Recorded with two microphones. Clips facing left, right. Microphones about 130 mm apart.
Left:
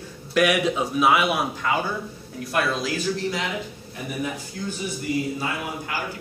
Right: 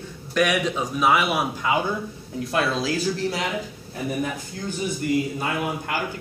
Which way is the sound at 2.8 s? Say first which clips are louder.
Right 1 dB; 35° right (ahead or behind).